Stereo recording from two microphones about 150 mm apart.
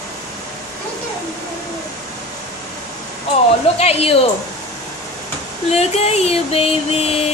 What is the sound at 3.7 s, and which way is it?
Speech, 40° left (ahead or behind).